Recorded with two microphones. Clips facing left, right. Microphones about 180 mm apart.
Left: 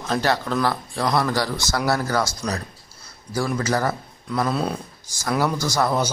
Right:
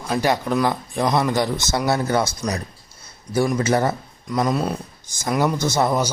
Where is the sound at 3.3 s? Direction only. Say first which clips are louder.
Right 4 dB; 20° right (ahead or behind).